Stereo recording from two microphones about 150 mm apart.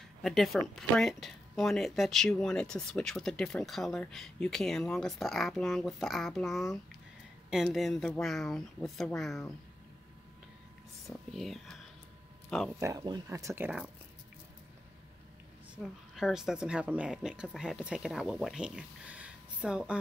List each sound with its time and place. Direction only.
0.2 s speech: centre (ahead or behind)
11.1 s speech: centre (ahead or behind)
12.7 s speech: 25° right (ahead or behind)
15.7 s a woman's voice: centre (ahead or behind)